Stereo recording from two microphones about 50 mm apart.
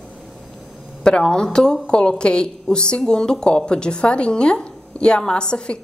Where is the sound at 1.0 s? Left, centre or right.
Centre.